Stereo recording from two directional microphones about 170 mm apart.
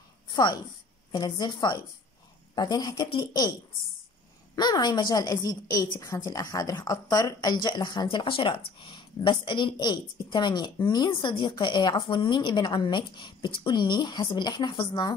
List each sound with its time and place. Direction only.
0.3 s a woman's voice: 25° left (ahead or behind)
4.6 s a woman's voice: 25° left (ahead or behind)